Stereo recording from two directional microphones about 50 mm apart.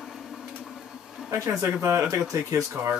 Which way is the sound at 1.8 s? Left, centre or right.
Right.